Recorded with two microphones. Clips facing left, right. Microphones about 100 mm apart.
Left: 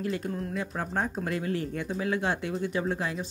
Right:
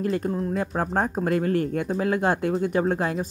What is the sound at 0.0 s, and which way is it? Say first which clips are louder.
Speech: right 6 dB; 45° right (ahead or behind).